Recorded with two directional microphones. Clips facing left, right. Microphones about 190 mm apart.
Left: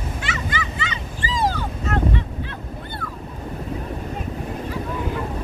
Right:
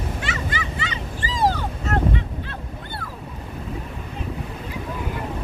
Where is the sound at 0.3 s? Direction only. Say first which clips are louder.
Left 1 dB; 35° right (ahead or behind).